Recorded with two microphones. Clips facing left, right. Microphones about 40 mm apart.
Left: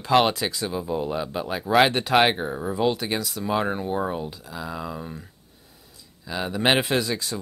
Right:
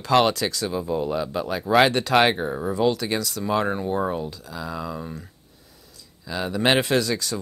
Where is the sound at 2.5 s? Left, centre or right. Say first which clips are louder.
Right 2 dB; centre.